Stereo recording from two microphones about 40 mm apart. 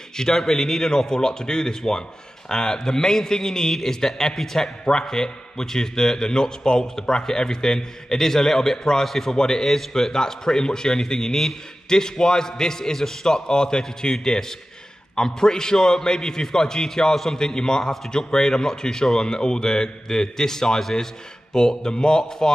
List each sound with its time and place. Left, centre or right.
0.2 s speech: centre